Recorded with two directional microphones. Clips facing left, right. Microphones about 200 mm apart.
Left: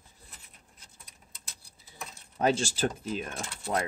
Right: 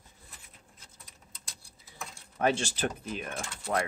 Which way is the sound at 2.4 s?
25° left (ahead or behind).